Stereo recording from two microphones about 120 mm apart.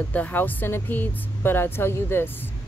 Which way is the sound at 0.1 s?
15° left (ahead or behind).